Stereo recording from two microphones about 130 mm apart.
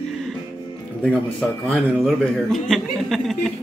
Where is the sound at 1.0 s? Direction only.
5° left (ahead or behind).